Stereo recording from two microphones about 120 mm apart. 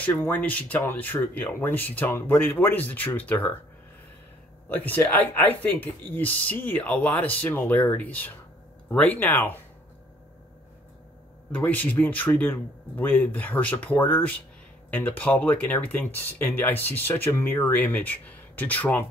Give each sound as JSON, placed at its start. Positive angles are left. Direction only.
{"t": 0.0, "sound": "speech", "side_deg": 15}
{"t": 4.6, "sound": "speech", "side_deg": 15}
{"t": 11.5, "sound": "speech", "side_deg": 10}